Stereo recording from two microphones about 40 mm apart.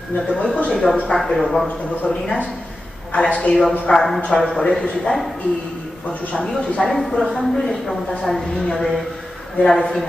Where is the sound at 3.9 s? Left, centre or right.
Centre.